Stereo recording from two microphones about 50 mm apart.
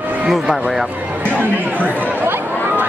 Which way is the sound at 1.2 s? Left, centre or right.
Right.